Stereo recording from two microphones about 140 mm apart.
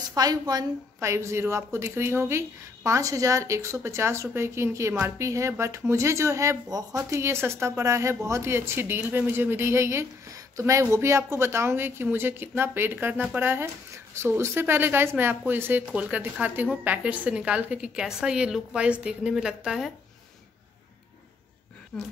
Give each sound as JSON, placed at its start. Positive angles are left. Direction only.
{"t": 0.1, "sound": "a woman's voice", "side_deg": -25}
{"t": 21.9, "sound": "speech", "side_deg": 5}